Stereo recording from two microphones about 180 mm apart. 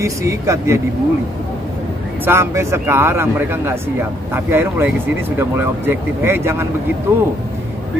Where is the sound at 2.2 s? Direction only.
15° right (ahead or behind).